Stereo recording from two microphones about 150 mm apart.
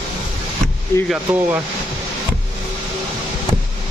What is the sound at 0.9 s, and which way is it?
Speech, 15° left (ahead or behind).